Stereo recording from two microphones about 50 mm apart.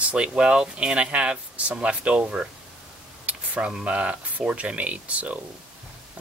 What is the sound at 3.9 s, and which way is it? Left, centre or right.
Speech, right.